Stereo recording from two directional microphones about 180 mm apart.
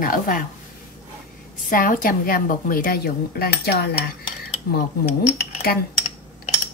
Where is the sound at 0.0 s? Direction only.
50° left (ahead or behind).